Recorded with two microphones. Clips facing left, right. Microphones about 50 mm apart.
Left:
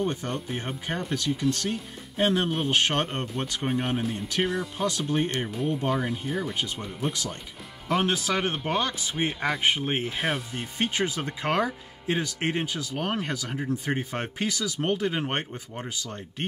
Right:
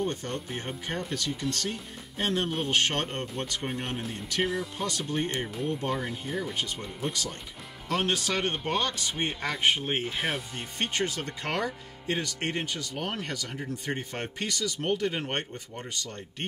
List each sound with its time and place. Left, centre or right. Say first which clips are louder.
0.0 s speech: left 3 dB; centre
2.1 s speech: left 4 dB; centre
4.0 s speech: left 3 dB; centre